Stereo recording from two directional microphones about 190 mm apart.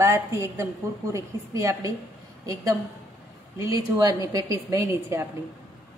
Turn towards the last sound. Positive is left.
turn(degrees=-15)  # may be behind; listen again after turning